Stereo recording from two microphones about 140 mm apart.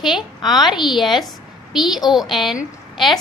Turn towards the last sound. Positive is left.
turn(degrees=0)  # may be behind; listen again after turning